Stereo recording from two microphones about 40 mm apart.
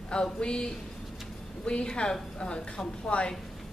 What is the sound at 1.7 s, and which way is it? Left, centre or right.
Speech, left.